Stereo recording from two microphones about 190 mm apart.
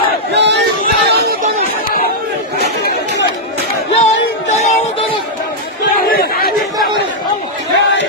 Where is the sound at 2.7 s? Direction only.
60° left (ahead or behind).